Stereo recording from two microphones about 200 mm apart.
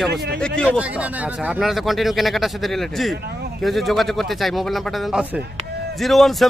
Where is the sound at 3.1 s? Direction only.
55° right (ahead or behind).